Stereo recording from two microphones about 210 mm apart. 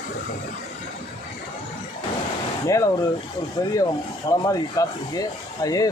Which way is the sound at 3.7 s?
15° left (ahead or behind).